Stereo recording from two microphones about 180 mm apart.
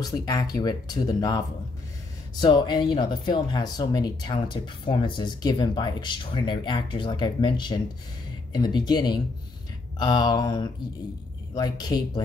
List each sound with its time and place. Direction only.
0.0 s speech: 20° left (ahead or behind)
2.4 s speech: 25° left (ahead or behind)